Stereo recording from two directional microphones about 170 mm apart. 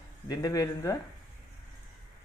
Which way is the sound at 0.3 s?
20° left (ahead or behind).